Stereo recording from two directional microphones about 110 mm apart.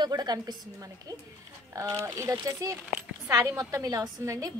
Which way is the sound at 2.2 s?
30° right (ahead or behind).